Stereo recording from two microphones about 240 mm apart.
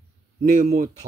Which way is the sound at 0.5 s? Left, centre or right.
Right.